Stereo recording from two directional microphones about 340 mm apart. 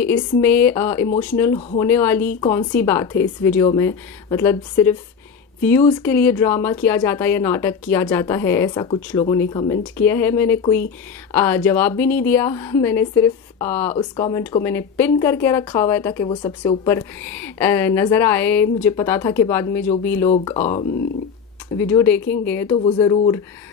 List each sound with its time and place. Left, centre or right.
0.0 s a woman's voice: centre
20.2 s speech: centre
21.7 s a woman's voice: centre